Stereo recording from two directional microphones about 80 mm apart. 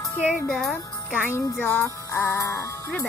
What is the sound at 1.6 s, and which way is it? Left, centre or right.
Music, left.